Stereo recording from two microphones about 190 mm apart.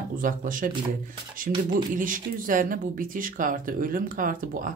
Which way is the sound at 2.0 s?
45° right (ahead or behind).